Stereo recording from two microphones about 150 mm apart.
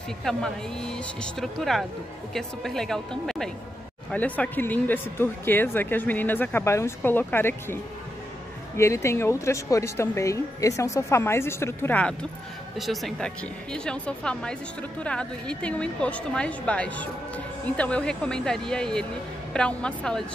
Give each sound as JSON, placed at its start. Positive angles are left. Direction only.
{"t": 0.2, "sound": "speech", "side_deg": 5}